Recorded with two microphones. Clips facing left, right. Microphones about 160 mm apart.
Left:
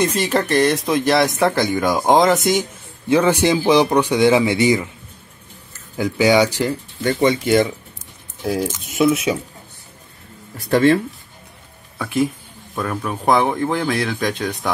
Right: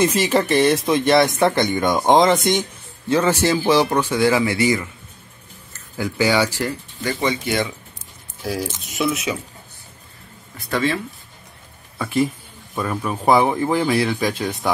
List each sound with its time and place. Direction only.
0.2 s speech: centre (ahead or behind)
3.1 s a man's voice: 15° left (ahead or behind)
5.9 s a man's voice: 15° left (ahead or behind)
7.0 s speech: 50° left (ahead or behind)
8.5 s speech: 20° left (ahead or behind)
10.7 s speech: 55° left (ahead or behind)
12.0 s speech: centre (ahead or behind)